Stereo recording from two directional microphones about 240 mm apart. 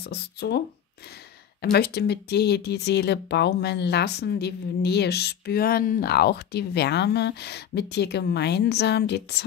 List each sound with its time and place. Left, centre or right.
0.0 s speech: left
1.6 s speech: left